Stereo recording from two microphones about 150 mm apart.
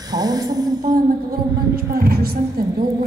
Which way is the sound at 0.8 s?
75° right (ahead or behind).